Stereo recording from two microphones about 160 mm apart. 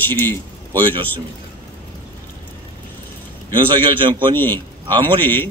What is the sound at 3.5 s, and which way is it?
A man's voice, 30° right (ahead or behind).